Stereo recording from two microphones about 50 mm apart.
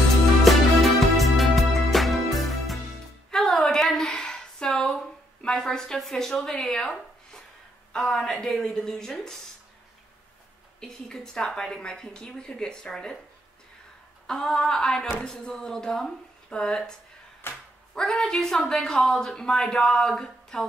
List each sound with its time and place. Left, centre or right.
0.5 s music: centre
4.3 s a sound: centre
5.9 s a woman's voice: centre
7.9 s a woman's voice: centre
10.8 s a woman's voice: centre
14.2 s a woman's voice: centre
17.4 s speech: left
17.9 s a woman's voice: centre